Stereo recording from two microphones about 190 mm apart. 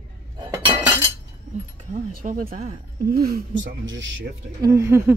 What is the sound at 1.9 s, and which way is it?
Speech, 45° right (ahead or behind).